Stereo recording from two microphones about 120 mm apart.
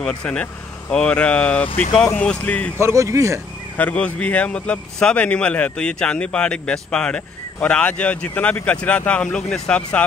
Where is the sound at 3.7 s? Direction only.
10° left (ahead or behind).